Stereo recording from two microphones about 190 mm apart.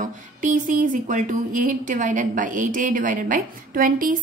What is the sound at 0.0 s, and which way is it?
A woman's voice, 40° right (ahead or behind).